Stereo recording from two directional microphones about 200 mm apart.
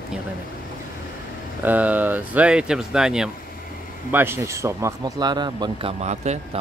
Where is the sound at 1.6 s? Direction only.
10° right (ahead or behind); by 6.6 s 35° right (ahead or behind).